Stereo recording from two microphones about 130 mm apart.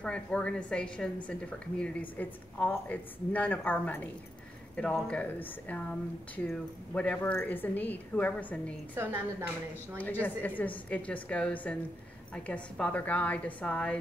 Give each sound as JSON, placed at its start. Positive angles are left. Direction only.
{"t": 0.0, "sound": "a woman's voice", "side_deg": 10}
{"t": 8.9, "sound": "a woman's voice", "side_deg": -15}
{"t": 9.9, "sound": "a woman's voice", "side_deg": 15}